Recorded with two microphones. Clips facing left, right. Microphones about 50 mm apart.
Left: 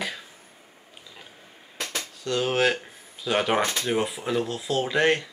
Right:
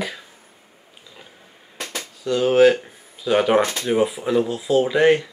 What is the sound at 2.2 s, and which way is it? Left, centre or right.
Speech, centre.